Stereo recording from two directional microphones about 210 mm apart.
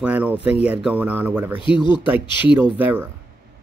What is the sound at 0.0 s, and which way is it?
Speech, 5° right (ahead or behind).